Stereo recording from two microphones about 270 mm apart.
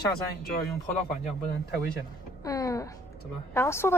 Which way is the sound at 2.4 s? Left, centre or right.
Centre.